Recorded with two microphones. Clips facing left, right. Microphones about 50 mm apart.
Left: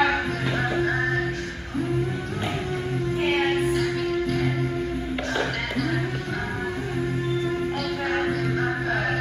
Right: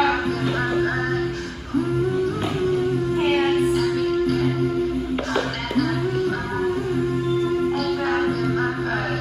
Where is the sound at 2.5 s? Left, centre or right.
Left.